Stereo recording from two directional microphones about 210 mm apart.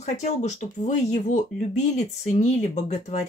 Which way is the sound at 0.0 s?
35° left (ahead or behind).